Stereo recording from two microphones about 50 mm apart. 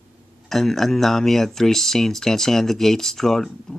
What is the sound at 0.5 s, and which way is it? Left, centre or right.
Speech, centre.